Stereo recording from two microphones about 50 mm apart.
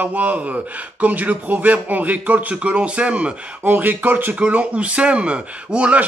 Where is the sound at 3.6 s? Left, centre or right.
Right.